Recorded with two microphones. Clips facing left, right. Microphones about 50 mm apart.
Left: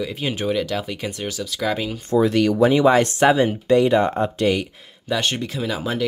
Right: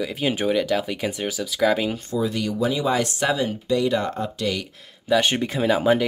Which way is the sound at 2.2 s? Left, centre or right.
Left.